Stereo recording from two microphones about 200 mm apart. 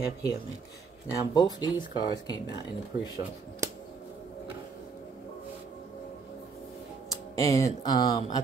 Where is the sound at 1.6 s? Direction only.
20° left (ahead or behind).